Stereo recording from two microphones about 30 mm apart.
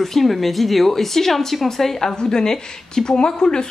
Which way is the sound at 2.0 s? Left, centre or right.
Left.